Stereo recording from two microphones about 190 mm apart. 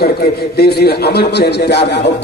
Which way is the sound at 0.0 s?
55° left (ahead or behind).